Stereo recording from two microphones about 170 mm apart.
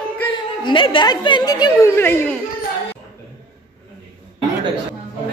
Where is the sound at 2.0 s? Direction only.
10° left (ahead or behind).